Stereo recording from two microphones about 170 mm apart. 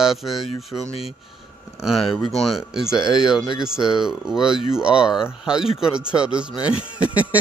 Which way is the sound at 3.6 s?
5° right (ahead or behind).